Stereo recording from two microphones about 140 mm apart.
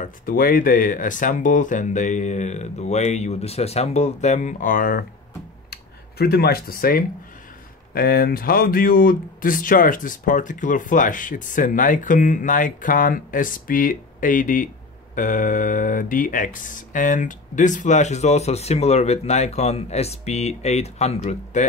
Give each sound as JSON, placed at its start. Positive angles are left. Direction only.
{"t": 0.0, "sound": "speech", "side_deg": 90}
{"t": 6.3, "sound": "speech", "side_deg": 90}